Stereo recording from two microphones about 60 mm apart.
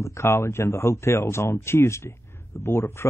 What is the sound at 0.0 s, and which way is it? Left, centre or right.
A man's voice, left.